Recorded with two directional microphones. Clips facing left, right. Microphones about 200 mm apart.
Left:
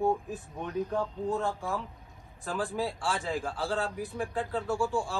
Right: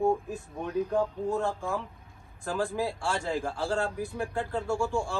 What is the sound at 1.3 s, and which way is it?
Speech, centre (ahead or behind).